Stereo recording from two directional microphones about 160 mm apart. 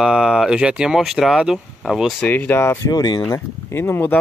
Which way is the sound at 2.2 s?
10° left (ahead or behind).